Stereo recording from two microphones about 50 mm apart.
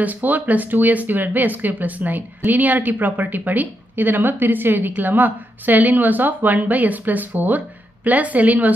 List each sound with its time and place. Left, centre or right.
0.0 s speech: right